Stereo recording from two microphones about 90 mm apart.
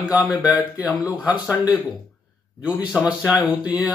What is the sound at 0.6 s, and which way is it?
Speech, 20° right (ahead or behind).